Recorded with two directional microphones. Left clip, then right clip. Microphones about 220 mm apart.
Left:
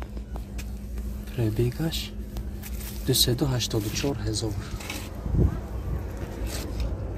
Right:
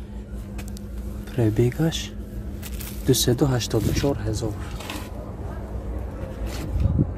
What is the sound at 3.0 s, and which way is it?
Speech, 25° right (ahead or behind).